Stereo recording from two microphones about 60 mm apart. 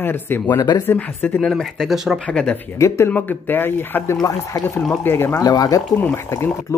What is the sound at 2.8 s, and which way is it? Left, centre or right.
Speech, left.